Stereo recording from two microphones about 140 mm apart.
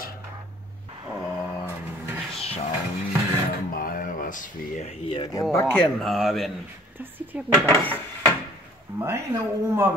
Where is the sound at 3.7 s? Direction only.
85° left; by 4.9 s 60° left (ahead or behind).